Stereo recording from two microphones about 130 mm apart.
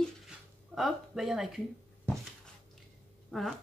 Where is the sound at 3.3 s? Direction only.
Centre (ahead or behind).